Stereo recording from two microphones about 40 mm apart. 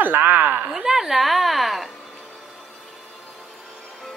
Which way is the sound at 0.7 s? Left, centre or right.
Centre.